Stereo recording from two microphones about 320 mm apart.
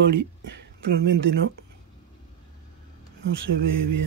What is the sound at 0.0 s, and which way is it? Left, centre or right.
Speech, right.